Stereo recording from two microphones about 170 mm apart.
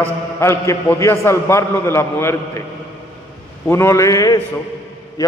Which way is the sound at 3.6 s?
15° left (ahead or behind).